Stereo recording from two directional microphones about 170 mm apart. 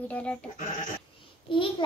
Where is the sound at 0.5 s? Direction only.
50° left (ahead or behind).